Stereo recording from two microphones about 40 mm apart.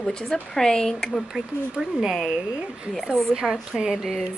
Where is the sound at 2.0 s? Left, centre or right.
Centre.